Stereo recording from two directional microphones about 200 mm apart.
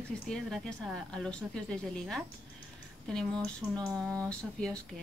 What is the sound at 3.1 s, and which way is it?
A woman's voice, 5° left (ahead or behind).